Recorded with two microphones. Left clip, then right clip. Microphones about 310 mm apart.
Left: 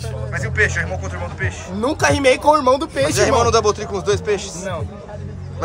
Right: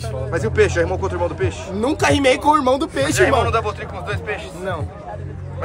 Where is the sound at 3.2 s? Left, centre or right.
Left.